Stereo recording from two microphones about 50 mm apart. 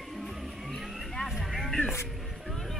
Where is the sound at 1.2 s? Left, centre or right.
Centre.